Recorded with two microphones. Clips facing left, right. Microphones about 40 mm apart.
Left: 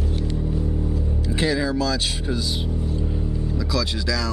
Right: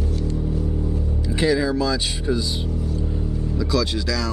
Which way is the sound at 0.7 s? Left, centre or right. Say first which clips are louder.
Even; centre.